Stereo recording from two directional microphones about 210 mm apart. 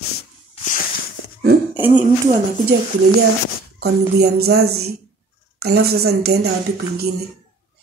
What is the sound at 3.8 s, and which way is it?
Speech, 50° right (ahead or behind).